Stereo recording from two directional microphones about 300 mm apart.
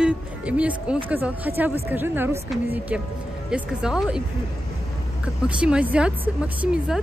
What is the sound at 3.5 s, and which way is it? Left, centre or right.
Speech, centre.